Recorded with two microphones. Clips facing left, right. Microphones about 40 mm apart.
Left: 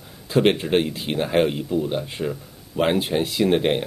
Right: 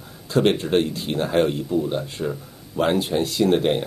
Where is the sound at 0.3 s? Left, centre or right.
Centre.